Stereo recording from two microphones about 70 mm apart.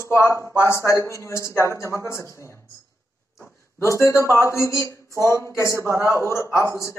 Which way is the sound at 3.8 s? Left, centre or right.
Left.